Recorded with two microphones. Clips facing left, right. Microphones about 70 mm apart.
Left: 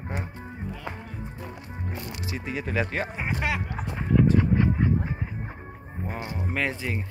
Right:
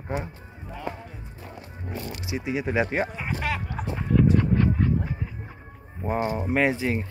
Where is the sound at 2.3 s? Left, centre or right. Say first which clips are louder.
Right 4 dB; centre.